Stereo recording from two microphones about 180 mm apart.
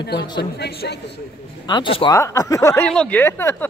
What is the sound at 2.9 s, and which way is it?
Speech, 5° left (ahead or behind).